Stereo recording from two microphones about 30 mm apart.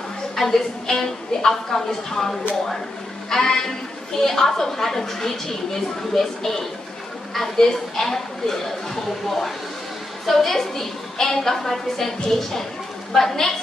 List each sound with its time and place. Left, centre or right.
0.4 s a woman's voice: centre